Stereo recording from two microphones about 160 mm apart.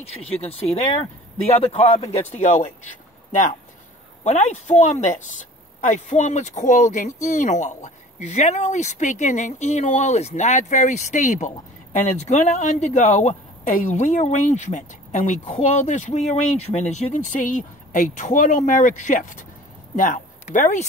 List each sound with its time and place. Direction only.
0.2 s speech: 40° left (ahead or behind)
4.2 s speech: 45° left (ahead or behind)